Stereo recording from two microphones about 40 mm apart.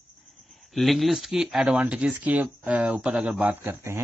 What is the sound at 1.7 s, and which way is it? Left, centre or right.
Speech, right.